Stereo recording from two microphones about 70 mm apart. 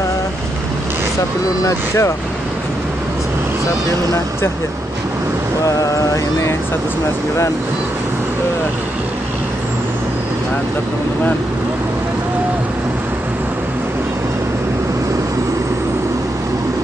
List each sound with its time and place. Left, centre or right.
1.6 s speech: left